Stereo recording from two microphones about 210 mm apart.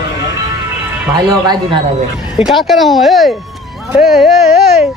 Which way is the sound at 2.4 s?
Centre (ahead or behind).